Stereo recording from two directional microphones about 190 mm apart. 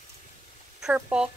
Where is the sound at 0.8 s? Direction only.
5° right (ahead or behind).